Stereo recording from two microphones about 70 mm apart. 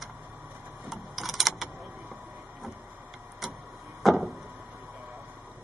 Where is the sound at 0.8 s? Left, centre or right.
Centre.